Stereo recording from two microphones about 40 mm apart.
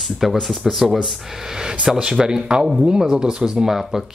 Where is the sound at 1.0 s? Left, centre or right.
Centre.